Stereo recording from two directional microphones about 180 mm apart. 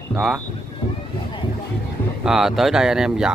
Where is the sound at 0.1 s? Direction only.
5° right (ahead or behind).